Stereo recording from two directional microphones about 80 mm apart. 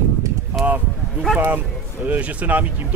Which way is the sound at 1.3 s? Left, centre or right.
Right.